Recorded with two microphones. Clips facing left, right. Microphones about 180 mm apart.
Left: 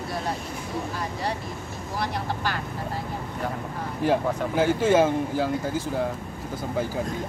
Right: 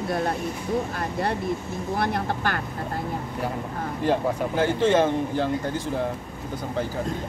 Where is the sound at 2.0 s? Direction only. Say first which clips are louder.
Right 2 dB; 55° right (ahead or behind).